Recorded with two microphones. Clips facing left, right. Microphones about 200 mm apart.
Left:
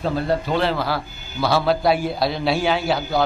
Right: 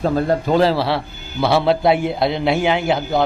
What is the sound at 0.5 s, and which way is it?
A man's voice, 40° right (ahead or behind).